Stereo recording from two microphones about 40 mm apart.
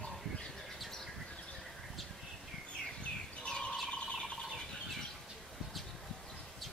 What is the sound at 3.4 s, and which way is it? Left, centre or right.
Bird, left.